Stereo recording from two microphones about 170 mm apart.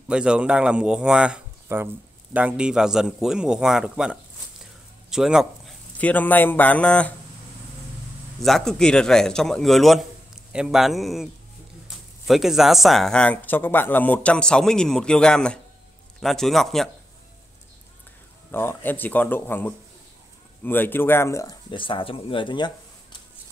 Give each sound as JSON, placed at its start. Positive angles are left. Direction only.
{"t": 0.1, "sound": "speech", "side_deg": -5}
{"t": 5.9, "sound": "a man's voice", "side_deg": 10}
{"t": 8.4, "sound": "speech", "side_deg": 0}
{"t": 12.3, "sound": "speech", "side_deg": 0}
{"t": 18.5, "sound": "a man's voice", "side_deg": 15}